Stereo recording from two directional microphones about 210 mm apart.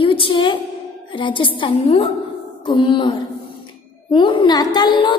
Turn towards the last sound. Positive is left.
turn(degrees=20)  # may be behind; listen again after turning